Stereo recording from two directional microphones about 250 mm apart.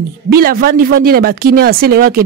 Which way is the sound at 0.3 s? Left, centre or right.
Right.